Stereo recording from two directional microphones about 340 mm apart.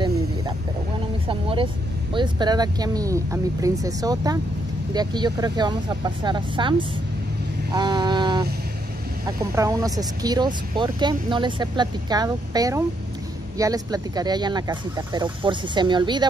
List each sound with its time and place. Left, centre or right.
1.2 s speech: centre
7.7 s vehicle: centre
9.6 s speech: centre